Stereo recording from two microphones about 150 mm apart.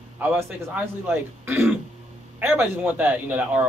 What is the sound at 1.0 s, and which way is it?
A man's voice, 15° right (ahead or behind).